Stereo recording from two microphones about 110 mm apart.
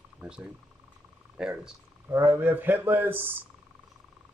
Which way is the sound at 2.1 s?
20° right (ahead or behind).